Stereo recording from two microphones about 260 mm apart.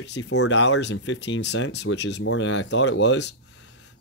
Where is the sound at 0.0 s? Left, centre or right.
Left.